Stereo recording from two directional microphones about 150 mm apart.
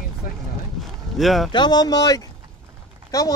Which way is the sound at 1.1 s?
Centre (ahead or behind).